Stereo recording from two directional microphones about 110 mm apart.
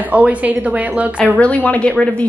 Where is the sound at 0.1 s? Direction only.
15° right (ahead or behind).